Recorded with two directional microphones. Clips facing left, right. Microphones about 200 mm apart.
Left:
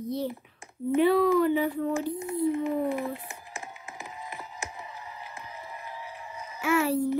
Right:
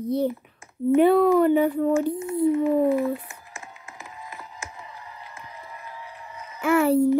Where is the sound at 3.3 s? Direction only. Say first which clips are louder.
Left 2 dB; 15° left (ahead or behind).